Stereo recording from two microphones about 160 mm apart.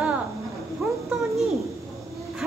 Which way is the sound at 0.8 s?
15° right (ahead or behind).